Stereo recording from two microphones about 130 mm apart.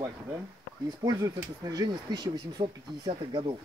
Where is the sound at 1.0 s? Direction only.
25° right (ahead or behind).